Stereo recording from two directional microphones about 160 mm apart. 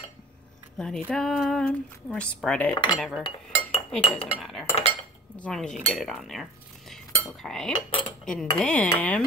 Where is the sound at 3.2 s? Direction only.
40° left (ahead or behind).